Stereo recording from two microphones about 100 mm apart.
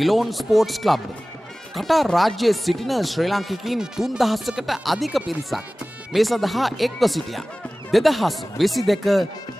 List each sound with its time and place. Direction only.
0.0 s speech: centre (ahead or behind)